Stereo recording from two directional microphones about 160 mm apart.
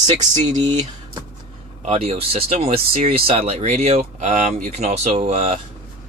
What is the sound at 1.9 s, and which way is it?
Speech, 40° right (ahead or behind).